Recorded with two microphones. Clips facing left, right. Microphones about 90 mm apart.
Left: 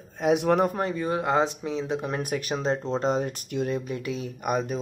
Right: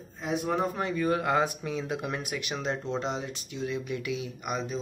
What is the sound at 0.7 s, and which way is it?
Speech, 40° left (ahead or behind).